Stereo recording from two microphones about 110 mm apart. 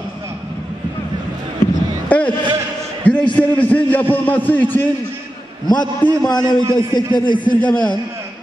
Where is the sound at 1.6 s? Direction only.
35° left (ahead or behind).